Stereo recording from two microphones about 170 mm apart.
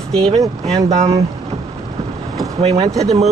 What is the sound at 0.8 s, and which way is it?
Speech, 40° right (ahead or behind).